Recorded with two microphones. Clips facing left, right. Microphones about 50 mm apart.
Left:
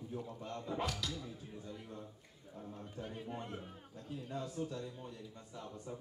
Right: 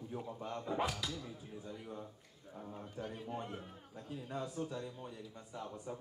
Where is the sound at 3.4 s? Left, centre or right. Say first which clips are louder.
Right 1 dB; centre.